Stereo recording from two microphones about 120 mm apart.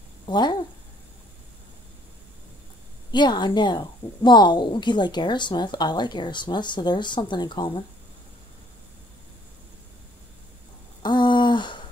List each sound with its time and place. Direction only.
0.3 s a woman's voice: 40° left (ahead or behind)
3.1 s a woman's voice: 40° left (ahead or behind)
11.0 s a sound: 40° left (ahead or behind)